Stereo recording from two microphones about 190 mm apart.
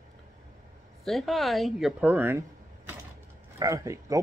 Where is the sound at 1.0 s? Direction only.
Centre (ahead or behind).